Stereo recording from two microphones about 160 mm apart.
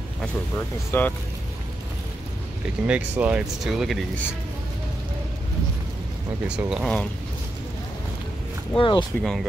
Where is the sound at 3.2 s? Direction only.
5° right (ahead or behind).